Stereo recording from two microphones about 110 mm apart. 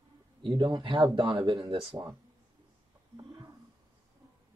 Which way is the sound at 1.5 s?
35° right (ahead or behind).